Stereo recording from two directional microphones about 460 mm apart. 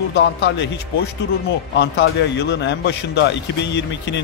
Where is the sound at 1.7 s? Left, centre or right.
Left.